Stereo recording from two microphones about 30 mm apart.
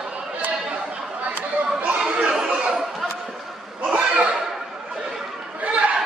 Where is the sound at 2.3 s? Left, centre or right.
Right.